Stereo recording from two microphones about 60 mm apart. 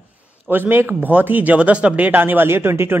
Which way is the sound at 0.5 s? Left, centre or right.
Right.